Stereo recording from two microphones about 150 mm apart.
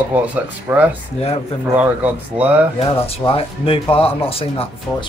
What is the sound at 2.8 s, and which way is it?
Speech, 40° left (ahead or behind).